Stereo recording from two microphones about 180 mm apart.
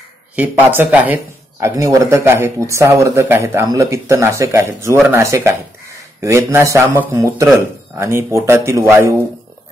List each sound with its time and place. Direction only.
0.4 s speech: 10° right (ahead or behind)